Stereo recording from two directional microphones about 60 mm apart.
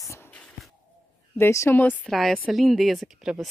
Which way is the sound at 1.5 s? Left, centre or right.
Left.